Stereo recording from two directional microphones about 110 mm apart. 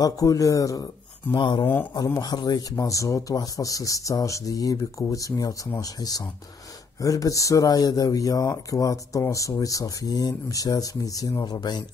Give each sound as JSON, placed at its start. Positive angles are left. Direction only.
{"t": 0.0, "sound": "speech", "side_deg": 30}
{"t": 1.3, "sound": "speech", "side_deg": 45}